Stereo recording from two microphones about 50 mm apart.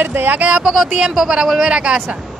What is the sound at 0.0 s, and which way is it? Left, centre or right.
Speech, right.